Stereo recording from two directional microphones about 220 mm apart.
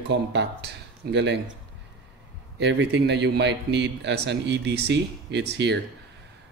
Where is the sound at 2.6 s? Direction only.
50° right (ahead or behind).